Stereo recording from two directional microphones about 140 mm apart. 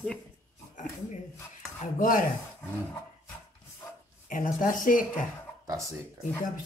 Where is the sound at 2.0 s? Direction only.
75° left (ahead or behind).